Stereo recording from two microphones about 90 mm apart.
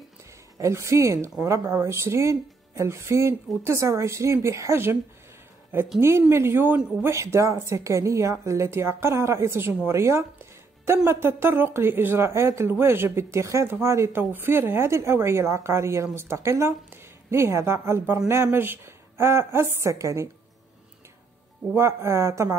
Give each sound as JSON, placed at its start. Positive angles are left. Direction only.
{"t": 0.6, "sound": "a woman's voice", "side_deg": -35}
{"t": 5.9, "sound": "a woman's voice", "side_deg": -30}
{"t": 9.8, "sound": "music", "side_deg": -30}
{"t": 11.1, "sound": "a woman's voice", "side_deg": -25}
{"t": 21.7, "sound": "a woman's voice", "side_deg": -30}